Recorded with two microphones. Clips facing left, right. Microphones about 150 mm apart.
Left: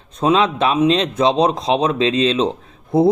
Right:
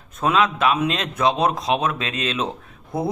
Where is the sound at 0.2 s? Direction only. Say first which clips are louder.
Left 4 dB; 30° left (ahead or behind).